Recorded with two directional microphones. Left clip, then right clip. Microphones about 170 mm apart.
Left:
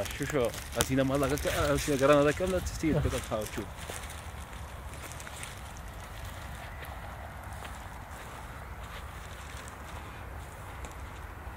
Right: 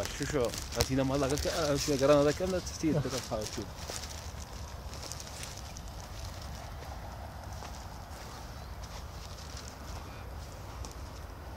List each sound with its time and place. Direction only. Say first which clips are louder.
0.2 s speech: left 2 dB; 40° left (ahead or behind)